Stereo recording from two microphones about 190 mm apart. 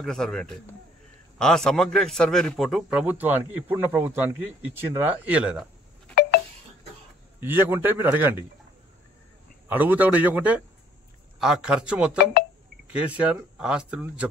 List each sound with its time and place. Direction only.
0.0 s a man's voice: 5° left (ahead or behind)
7.3 s speech: 10° right (ahead or behind)
9.7 s a man's voice: 10° right (ahead or behind)
12.4 s a sound: 55° left (ahead or behind)
12.9 s speech: 5° right (ahead or behind)